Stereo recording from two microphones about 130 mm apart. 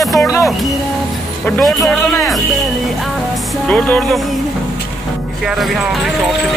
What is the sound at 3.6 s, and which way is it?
Music, 10° left (ahead or behind).